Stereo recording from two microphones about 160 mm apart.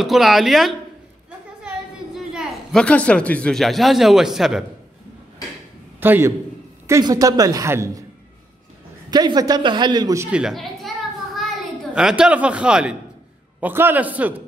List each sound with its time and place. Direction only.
0.0 s speech: centre (ahead or behind)
2.1 s speech: centre (ahead or behind)
5.9 s a man's voice: 15° right (ahead or behind)
6.9 s a man's voice: 25° right (ahead or behind)
9.1 s a man's voice: 25° right (ahead or behind)
10.3 s a child's voice: centre (ahead or behind)
11.3 s a sound: centre (ahead or behind)
13.6 s a man's voice: 10° right (ahead or behind)